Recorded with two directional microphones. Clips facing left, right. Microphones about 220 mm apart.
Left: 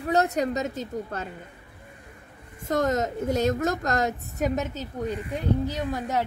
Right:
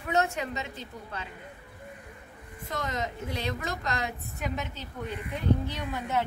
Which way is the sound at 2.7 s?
45° left (ahead or behind).